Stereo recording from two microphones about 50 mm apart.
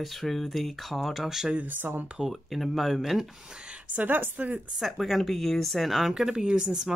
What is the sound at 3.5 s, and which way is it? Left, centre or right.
Speech, centre.